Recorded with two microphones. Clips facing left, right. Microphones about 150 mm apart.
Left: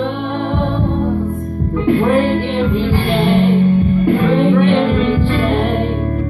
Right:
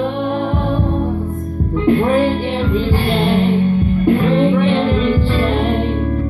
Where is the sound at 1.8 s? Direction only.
Centre (ahead or behind).